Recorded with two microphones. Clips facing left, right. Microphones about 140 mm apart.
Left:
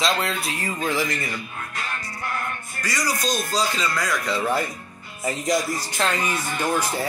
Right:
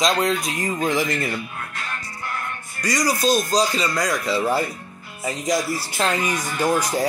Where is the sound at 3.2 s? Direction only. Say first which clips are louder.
Right 6 dB; 35° right (ahead or behind).